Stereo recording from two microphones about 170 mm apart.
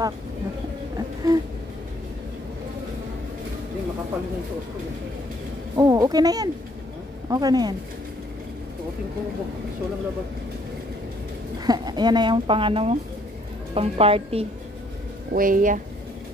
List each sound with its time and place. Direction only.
0.9 s a sound: 20° right (ahead or behind)
5.8 s speech: 20° right (ahead or behind)
11.6 s speech: 25° right (ahead or behind)
15.3 s speech: 55° right (ahead or behind)